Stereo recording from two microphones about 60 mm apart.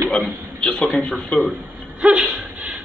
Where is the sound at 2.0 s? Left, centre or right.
Centre.